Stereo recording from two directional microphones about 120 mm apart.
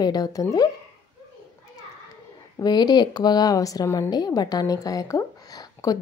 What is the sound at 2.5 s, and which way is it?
A woman's voice, 35° left (ahead or behind).